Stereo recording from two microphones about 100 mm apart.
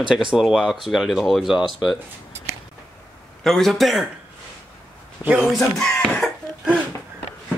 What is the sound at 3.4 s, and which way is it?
Speech, 5° left (ahead or behind).